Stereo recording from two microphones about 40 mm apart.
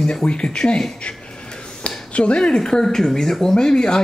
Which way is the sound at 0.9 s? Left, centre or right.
Left.